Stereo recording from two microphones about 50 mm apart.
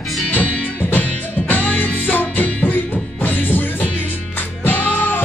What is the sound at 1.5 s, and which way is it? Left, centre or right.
Music, left.